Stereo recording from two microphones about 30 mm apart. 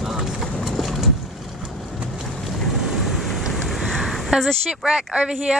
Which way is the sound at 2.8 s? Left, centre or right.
Centre.